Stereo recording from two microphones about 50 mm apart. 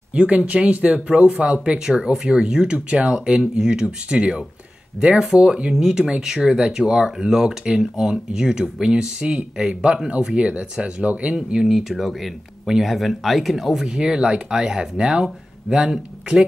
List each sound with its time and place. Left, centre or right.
0.1 s speech: right; by 13.8 s centre
13.8 s speech: centre